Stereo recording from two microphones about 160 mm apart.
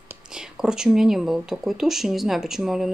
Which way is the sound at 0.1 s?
5° right (ahead or behind).